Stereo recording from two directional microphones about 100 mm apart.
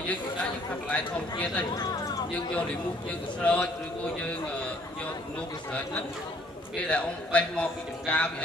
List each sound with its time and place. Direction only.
0.9 s a man's voice: 10° left (ahead or behind)
1.7 s speech: 40° left (ahead or behind)
3.3 s a man's voice: 10° left (ahead or behind)
6.9 s a man's voice: 10° left (ahead or behind)